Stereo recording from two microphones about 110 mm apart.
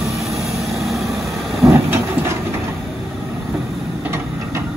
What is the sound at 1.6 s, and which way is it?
Train, 25° right (ahead or behind).